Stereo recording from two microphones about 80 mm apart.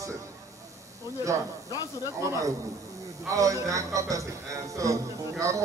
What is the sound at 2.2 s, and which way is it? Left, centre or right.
A man's voice, right.